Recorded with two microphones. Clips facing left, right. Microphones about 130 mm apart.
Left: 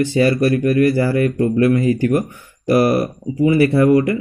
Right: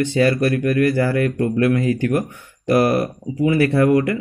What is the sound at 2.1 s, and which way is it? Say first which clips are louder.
Mantra: left 3 dB; centre (ahead or behind).